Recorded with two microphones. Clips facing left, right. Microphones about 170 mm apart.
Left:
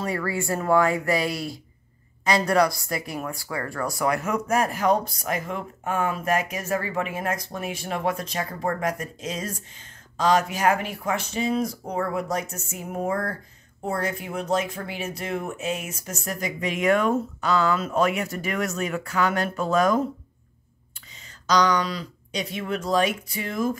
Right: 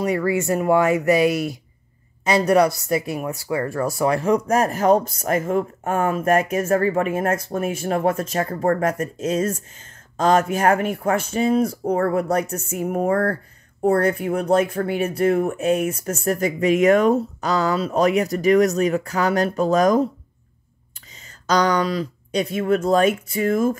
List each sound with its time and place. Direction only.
0.0 s speech: 20° right (ahead or behind); by 20.0 s 40° right (ahead or behind)
21.5 s speech: 50° right (ahead or behind)